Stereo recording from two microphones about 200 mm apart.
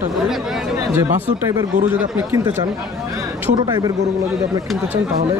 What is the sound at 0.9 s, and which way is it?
A man's voice, 15° right (ahead or behind).